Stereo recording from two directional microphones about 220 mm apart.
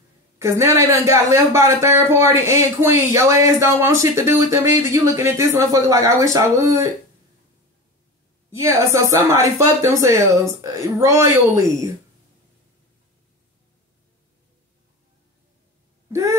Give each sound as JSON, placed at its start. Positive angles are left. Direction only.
{"t": 0.4, "sound": "speech", "side_deg": -15}
{"t": 8.5, "sound": "speech", "side_deg": -15}
{"t": 16.1, "sound": "a sound", "side_deg": -15}